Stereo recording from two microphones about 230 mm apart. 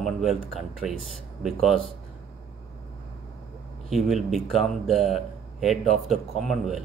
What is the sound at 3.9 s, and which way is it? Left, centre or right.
Speech, centre.